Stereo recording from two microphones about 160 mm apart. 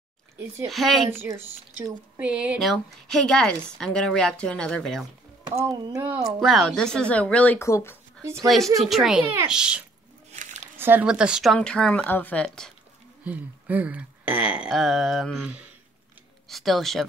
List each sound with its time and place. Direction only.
0.7 s a woman's voice: centre (ahead or behind)
2.1 s a woman's voice: 10° right (ahead or behind)
5.6 s speech: 25° right (ahead or behind)
6.0 s a sound: 20° right (ahead or behind)
6.4 s speech: centre (ahead or behind); by 8.0 s 15° left (ahead or behind)
8.2 s speech: 15° right (ahead or behind)
8.8 s a woman's voice: centre (ahead or behind)
9.2 s a sound: 15° right (ahead or behind)
9.5 s a woman's voice: 5° right (ahead or behind)
10.3 s squish: 50° right (ahead or behind)
10.8 s a woman's voice: 10° right (ahead or behind)
11.5 s a woman's voice: 5° left (ahead or behind)
13.2 s a sound: 10° right (ahead or behind)
16.4 s speech: centre (ahead or behind)